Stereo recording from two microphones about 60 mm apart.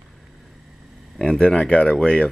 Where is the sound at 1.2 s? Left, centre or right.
Centre.